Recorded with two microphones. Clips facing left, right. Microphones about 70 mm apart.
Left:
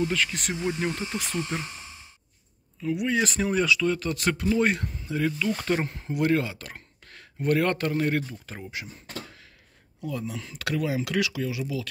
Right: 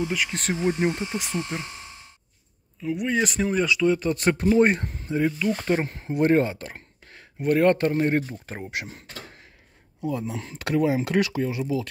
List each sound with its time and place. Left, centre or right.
0.0 s speech: centre
0.3 s speech: right; by 1.4 s centre
2.8 s speech: centre
3.8 s speech: centre
4.1 s speech: right
8.6 s speech: right
10.0 s speech: right